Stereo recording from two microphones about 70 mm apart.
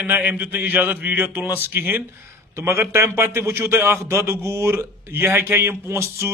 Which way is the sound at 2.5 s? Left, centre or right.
Right.